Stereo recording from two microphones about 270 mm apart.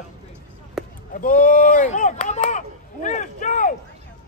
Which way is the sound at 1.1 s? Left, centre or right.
Left.